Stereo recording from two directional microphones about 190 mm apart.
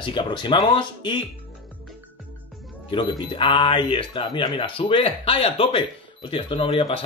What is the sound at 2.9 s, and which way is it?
A man's voice, 25° left (ahead or behind).